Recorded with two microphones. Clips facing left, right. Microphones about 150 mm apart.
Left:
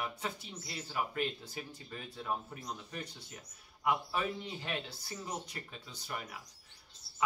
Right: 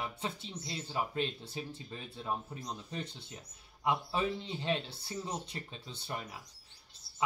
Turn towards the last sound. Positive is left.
turn(degrees=-30)  # may be behind; listen again after turning